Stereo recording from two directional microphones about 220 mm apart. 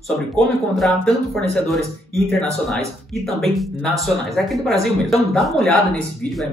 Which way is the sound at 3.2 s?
Centre (ahead or behind).